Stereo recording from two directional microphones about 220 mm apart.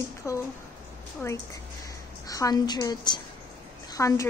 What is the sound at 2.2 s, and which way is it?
A woman's voice, 15° left (ahead or behind).